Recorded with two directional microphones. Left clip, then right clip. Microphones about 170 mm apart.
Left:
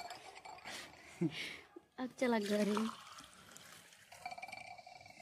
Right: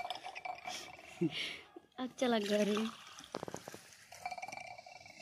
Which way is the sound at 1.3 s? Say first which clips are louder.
Right 4 dB; 20° left (ahead or behind).